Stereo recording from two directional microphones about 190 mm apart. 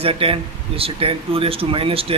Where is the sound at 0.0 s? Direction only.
30° right (ahead or behind).